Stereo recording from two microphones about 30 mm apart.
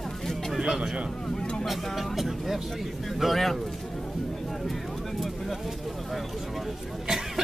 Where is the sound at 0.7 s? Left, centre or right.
Centre.